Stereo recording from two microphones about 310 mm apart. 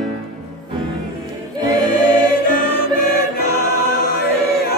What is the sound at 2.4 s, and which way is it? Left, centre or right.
Music, left.